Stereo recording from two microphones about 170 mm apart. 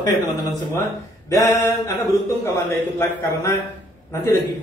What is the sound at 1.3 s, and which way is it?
A man's voice, 20° left (ahead or behind).